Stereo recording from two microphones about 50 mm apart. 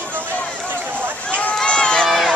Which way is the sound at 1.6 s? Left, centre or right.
Centre.